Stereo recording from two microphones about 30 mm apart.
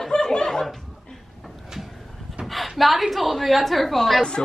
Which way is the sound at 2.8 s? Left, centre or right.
Centre.